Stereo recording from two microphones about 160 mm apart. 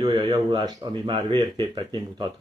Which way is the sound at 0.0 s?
30° right (ahead or behind).